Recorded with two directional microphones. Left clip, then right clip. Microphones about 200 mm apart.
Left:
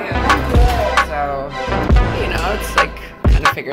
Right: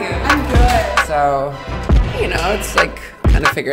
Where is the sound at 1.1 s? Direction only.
35° right (ahead or behind).